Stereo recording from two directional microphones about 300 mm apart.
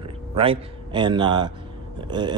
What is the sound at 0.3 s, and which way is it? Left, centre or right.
A man's voice, centre.